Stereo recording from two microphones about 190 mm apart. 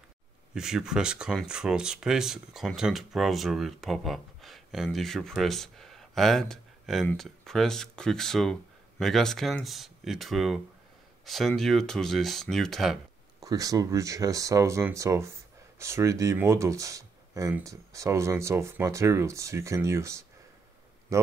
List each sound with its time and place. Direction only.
0.6 s speech: 5° right (ahead or behind)
13.4 s speech: 20° right (ahead or behind)